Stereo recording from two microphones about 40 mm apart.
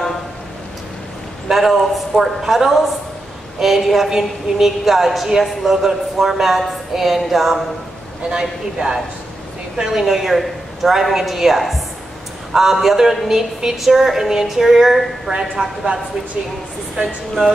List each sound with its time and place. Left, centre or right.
1.5 s a woman's voice: centre
8.3 s a woman's voice: centre
15.3 s a woman's voice: right
16.9 s speech: centre